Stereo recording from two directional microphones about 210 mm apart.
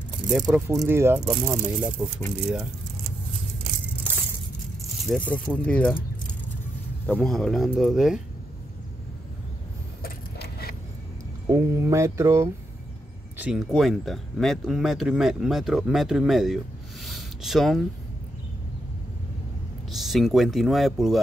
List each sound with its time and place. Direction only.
0.3 s speech: 5° right (ahead or behind)
5.0 s speech: 5° left (ahead or behind)
7.1 s speech: 5° left (ahead or behind)
10.0 s a sound: 45° left (ahead or behind)
11.4 s speech: 15° right (ahead or behind)
19.9 s speech: centre (ahead or behind)